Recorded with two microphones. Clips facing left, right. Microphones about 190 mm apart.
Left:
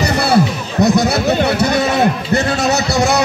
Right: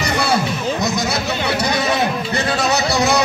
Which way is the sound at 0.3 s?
60° left (ahead or behind).